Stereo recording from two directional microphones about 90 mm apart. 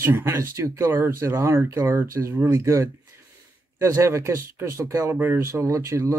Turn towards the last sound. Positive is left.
turn(degrees=-35)  # may be behind; listen again after turning